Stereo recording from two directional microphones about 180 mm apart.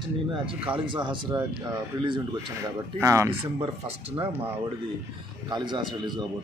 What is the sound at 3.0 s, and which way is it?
Speech, 15° right (ahead or behind).